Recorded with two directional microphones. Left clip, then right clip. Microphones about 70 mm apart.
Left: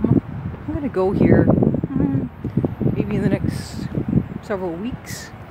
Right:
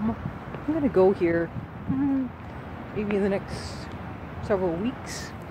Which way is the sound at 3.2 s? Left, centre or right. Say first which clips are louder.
Left 4 dB; left.